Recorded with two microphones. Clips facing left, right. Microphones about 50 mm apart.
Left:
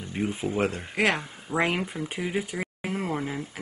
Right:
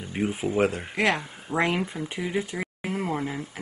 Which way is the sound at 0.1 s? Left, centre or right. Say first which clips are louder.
Right 2 dB; centre.